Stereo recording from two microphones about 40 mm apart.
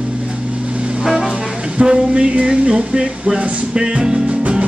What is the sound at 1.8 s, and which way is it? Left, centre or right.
Speech, right.